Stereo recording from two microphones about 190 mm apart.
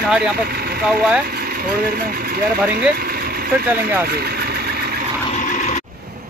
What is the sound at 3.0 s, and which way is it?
Vehicle, 55° right (ahead or behind).